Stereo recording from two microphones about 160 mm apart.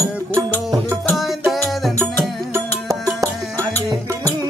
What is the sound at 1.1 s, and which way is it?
Music, centre (ahead or behind).